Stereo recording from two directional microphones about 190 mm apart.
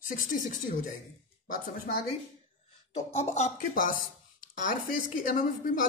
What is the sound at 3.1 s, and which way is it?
Speech, 35° left (ahead or behind).